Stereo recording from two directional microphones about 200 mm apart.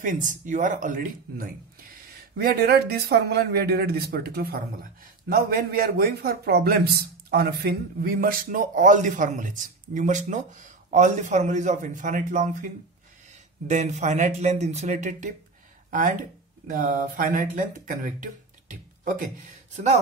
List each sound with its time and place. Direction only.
0.0 s a man's voice: 40° right (ahead or behind)
2.3 s a man's voice: 50° right (ahead or behind); by 20.0 s 35° right (ahead or behind)